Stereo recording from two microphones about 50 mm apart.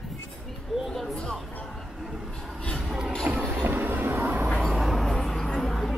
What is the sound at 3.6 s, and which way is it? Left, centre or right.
Train, right.